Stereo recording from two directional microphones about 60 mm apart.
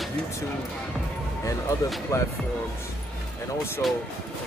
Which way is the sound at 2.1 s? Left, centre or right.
Left.